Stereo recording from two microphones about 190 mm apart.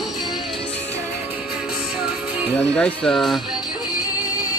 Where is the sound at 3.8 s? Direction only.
20° left (ahead or behind).